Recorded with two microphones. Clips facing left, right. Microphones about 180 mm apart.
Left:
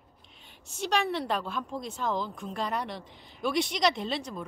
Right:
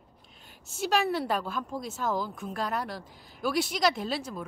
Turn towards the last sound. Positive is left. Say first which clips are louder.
# even
turn(degrees=-5)  # may be behind; listen again after turning